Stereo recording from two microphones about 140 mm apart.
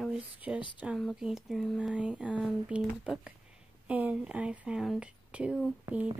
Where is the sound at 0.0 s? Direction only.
5° right (ahead or behind).